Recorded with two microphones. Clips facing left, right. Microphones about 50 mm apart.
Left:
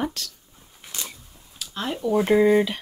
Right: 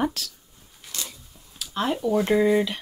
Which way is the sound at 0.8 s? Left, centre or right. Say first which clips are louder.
Even; left.